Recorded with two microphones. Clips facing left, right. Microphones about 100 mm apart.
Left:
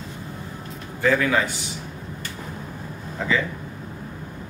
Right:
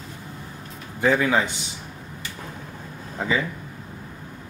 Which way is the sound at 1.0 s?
20° right (ahead or behind).